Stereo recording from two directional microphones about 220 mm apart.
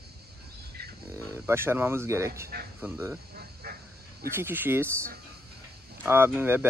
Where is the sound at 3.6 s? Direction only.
45° right (ahead or behind).